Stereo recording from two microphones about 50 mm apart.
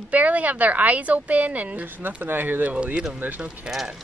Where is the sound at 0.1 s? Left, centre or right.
Right.